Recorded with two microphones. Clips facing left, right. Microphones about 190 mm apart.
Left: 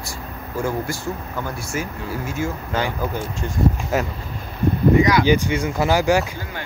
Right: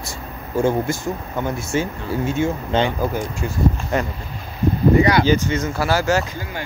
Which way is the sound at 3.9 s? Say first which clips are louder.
Even; 5° left (ahead or behind).